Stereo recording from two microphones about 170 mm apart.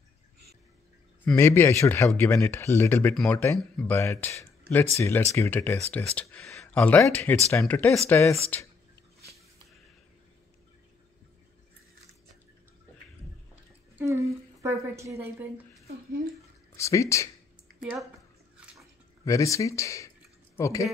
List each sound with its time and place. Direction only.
1.2 s speech: 15° left (ahead or behind)
13.9 s a woman's voice: 15° right (ahead or behind)
16.7 s speech: 15° left (ahead or behind)
19.2 s speech: 20° left (ahead or behind)